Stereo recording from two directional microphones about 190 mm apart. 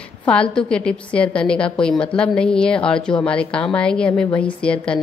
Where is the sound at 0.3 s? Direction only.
5° left (ahead or behind).